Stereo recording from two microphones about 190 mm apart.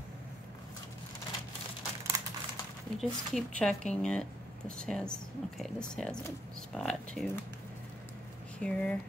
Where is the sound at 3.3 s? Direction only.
5° left (ahead or behind).